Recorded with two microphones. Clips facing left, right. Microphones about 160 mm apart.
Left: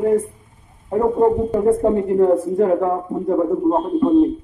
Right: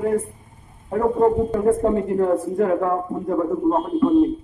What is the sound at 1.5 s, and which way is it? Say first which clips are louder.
Speech: left 2 dB; 20° left (ahead or behind).